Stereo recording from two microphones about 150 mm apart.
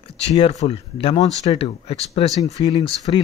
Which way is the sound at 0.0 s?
40° left (ahead or behind).